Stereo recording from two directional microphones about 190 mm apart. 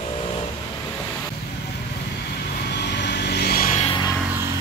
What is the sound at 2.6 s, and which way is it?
Vehicle, 60° left (ahead or behind).